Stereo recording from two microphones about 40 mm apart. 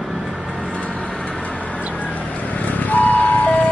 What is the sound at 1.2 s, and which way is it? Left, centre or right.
Vehicle, left.